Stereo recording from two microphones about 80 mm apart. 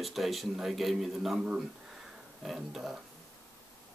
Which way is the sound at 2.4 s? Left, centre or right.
Centre.